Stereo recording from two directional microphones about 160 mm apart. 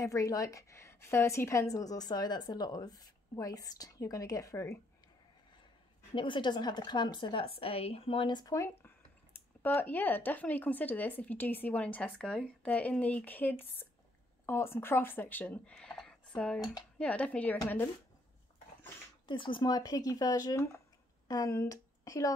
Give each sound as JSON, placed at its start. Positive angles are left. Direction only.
{"t": 0.0, "sound": "a woman's voice", "side_deg": 20}
{"t": 6.1, "sound": "a woman's voice", "side_deg": 30}
{"t": 19.2, "sound": "a woman's voice", "side_deg": 30}